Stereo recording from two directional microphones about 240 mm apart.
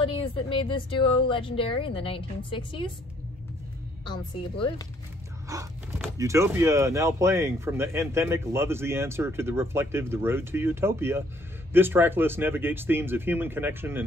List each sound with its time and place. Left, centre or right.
0.0 s speech: left
4.0 s speech: centre
5.5 s speech: centre